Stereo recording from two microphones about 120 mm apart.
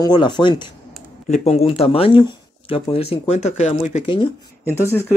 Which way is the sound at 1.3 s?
60° left (ahead or behind).